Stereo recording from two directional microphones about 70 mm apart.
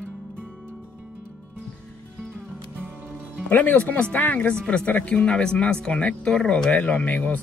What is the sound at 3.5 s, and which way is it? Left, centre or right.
Speech, left.